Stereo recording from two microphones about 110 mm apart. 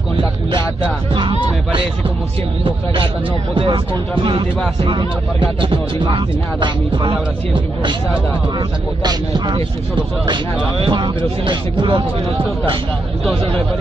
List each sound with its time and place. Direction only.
2.6 s speech: 50° right (ahead or behind)
5.6 s speech: 50° right (ahead or behind)
10.9 s speech: 45° right (ahead or behind)